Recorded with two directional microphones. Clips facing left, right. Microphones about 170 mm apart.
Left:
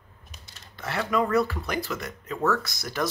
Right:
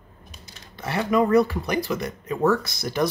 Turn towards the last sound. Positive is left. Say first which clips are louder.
# right 5 dB
turn(degrees=-25)  # may be behind; listen again after turning